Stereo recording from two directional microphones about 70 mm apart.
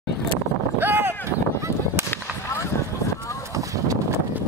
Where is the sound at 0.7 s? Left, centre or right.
Right.